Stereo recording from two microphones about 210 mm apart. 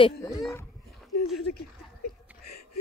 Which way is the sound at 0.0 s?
15° left (ahead or behind).